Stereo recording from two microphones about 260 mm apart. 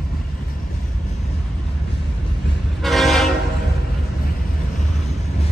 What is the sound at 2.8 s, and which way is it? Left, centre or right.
Train, centre.